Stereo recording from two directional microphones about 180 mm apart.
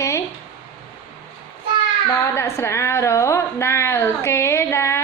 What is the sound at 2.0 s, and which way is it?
A woman's voice, 15° left (ahead or behind).